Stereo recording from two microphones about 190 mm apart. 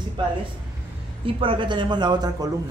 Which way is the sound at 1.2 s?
25° right (ahead or behind).